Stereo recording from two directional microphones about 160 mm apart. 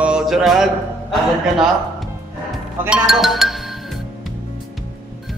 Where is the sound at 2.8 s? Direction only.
5° right (ahead or behind).